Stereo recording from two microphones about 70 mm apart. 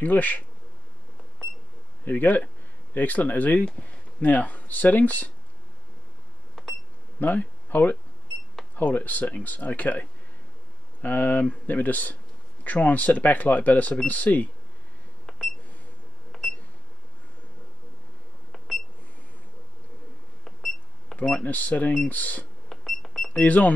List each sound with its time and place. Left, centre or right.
0.0 s speech: left
2.0 s speech: left
7.2 s speech: left
15.2 s a sound: centre
20.4 s a sound: centre
21.2 s speech: left
22.7 s cash register: centre
23.3 s speech: left